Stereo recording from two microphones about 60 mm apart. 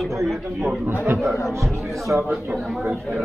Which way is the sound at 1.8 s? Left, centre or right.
Centre.